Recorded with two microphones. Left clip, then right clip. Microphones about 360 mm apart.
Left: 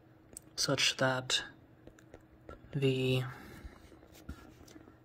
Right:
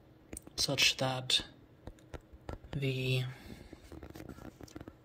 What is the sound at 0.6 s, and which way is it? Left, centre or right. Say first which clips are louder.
Speech: even; centre.